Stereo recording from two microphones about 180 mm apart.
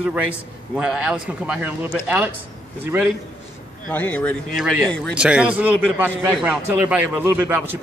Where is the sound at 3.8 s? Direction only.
10° left (ahead or behind).